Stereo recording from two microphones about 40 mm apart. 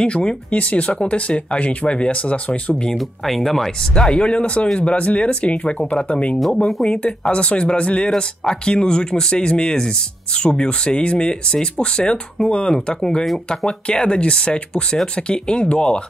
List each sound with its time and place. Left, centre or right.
0.0 s speech: left
0.5 s speech: left
3.0 s speech: centre
3.9 s speech: left